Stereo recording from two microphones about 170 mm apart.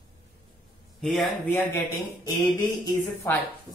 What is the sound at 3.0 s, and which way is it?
Speech, 15° left (ahead or behind).